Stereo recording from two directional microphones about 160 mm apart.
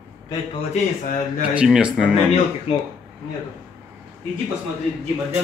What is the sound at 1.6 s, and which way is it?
Speech, 5° right (ahead or behind).